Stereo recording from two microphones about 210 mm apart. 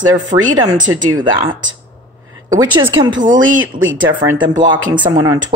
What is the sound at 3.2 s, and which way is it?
Speech, 40° right (ahead or behind).